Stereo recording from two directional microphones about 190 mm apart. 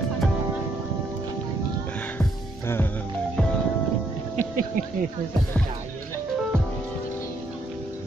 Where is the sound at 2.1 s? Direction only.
10° left (ahead or behind).